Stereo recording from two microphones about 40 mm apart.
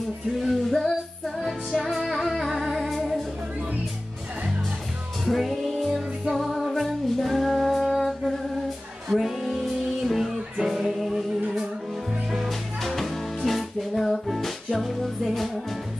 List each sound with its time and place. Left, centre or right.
0.4 s music: centre
1.9 s humming: centre
5.2 s music: centre
12.3 s music: centre